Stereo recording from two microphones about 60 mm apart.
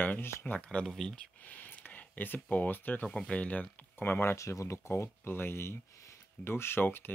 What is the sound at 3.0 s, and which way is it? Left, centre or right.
Speech, centre.